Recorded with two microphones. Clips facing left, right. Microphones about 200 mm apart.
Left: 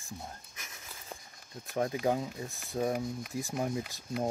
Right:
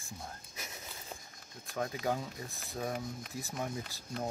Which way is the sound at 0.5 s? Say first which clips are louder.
Right 4 dB; 30° right (ahead or behind).